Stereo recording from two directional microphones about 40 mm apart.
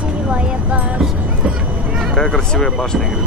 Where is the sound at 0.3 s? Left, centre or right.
Right.